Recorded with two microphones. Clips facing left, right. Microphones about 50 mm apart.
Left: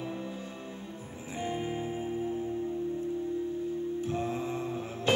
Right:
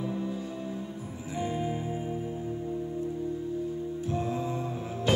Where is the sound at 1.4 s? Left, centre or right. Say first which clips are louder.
Right 2 dB; left.